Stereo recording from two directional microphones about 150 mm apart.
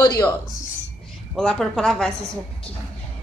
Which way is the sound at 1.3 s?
Centre (ahead or behind).